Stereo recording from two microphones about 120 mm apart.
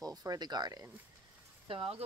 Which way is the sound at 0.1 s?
30° right (ahead or behind).